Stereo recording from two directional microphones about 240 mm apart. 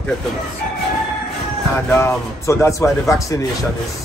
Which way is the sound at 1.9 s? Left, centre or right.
Centre.